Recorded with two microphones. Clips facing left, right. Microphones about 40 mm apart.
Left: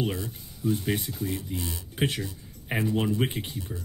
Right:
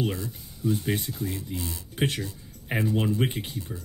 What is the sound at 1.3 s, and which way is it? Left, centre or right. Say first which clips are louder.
Speech: left 1 dB; left.